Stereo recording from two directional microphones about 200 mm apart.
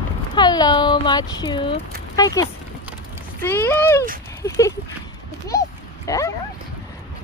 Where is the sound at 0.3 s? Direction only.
20° left (ahead or behind).